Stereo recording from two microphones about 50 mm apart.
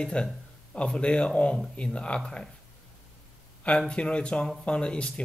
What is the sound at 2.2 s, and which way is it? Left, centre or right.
Speech, centre.